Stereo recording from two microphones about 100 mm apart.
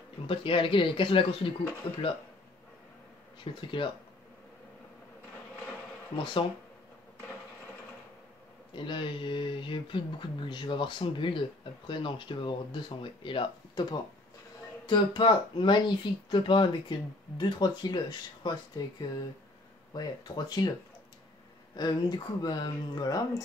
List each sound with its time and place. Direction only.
0.3 s speech: 60° left (ahead or behind)
3.6 s speech: 55° left (ahead or behind)
6.1 s speech: 55° left (ahead or behind)
8.7 s speech: 55° left (ahead or behind)
21.7 s speech: 45° left (ahead or behind)